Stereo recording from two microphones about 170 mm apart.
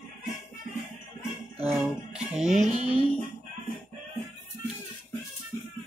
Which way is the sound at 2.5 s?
45° right (ahead or behind).